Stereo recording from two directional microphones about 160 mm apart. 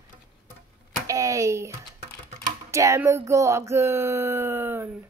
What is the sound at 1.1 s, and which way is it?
Speech, 20° right (ahead or behind).